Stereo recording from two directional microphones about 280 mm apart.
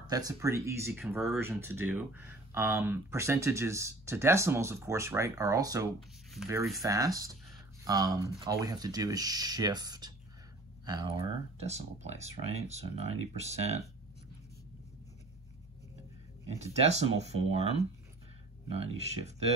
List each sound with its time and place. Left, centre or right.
0.0 s speech: centre
6.5 s speech: centre
6.8 s speech: centre
16.4 s speech: right
18.7 s speech: right